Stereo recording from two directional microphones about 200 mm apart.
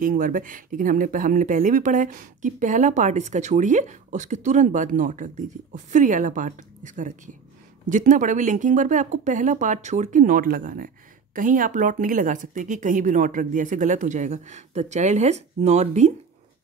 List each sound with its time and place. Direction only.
0.0 s speech: 45° right (ahead or behind)